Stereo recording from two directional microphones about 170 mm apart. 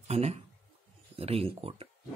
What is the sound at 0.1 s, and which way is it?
Speech, 40° right (ahead or behind).